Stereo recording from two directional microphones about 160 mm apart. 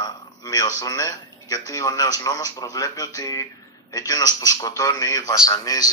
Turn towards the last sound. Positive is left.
turn(degrees=25)  # may be behind; listen again after turning